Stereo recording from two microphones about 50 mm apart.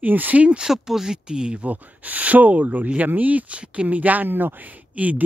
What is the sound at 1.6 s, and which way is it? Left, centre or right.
Speech, right.